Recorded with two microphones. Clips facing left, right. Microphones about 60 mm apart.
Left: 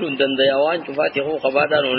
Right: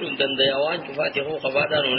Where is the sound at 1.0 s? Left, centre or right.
Left.